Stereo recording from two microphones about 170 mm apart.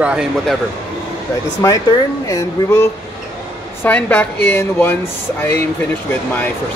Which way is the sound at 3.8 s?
10° left (ahead or behind).